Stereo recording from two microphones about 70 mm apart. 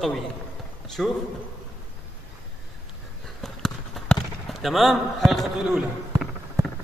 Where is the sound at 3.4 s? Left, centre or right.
Centre.